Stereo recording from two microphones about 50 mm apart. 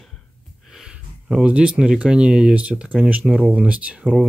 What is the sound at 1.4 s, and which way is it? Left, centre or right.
Speech, right.